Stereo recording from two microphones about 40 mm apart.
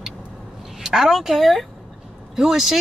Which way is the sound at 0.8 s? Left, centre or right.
Centre.